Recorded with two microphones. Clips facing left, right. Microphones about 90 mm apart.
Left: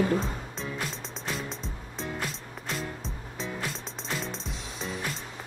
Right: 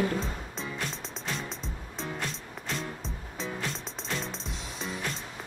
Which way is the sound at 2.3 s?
Centre (ahead or behind).